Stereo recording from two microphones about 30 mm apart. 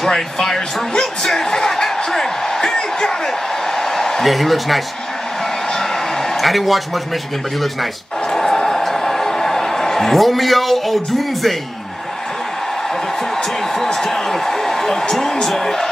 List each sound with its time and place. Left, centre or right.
0.0 s a man's voice: centre
0.9 s a sound: centre
4.2 s speech: centre
6.4 s speech: centre
8.3 s a sound: centre
14.0 s a man's voice: centre